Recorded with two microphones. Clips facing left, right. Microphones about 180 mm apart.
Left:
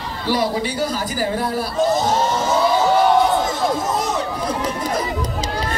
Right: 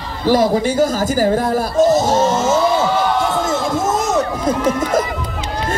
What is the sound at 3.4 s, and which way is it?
Crowd, 45° right (ahead or behind).